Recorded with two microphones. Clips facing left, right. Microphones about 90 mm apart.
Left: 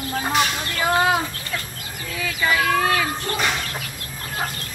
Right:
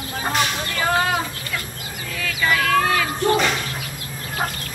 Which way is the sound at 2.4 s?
10° left (ahead or behind).